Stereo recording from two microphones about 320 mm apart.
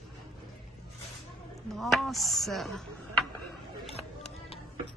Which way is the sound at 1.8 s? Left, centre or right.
Centre.